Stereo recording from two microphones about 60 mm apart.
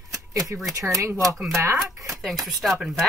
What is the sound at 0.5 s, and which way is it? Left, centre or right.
Speech, right.